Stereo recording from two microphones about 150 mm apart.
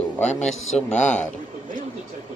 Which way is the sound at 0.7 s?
50° left (ahead or behind).